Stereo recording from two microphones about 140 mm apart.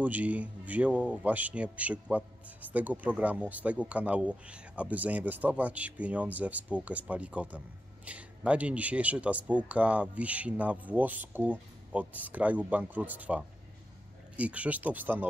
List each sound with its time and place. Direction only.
0.0 s a man's voice: 10° right (ahead or behind)